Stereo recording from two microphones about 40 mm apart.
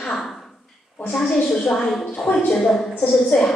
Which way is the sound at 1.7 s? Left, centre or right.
Centre.